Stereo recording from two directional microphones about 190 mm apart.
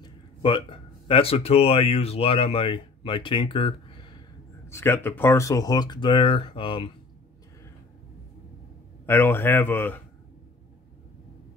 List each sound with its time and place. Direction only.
0.0 s speech: 25° left (ahead or behind)
4.6 s speech: 15° left (ahead or behind)
9.0 s speech: 10° left (ahead or behind)